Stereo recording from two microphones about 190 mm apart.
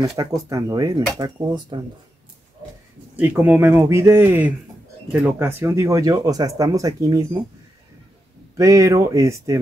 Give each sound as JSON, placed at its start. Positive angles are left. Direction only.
{"t": 0.2, "sound": "speech", "side_deg": -20}
{"t": 3.2, "sound": "speech", "side_deg": -10}
{"t": 8.5, "sound": "speech", "side_deg": -15}